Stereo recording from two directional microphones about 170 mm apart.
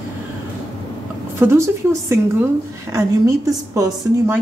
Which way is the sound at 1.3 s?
15° right (ahead or behind).